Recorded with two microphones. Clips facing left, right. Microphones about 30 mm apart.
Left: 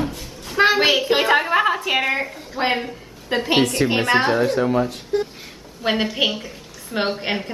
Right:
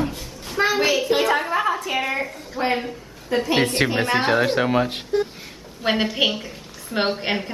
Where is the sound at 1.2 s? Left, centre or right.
Left.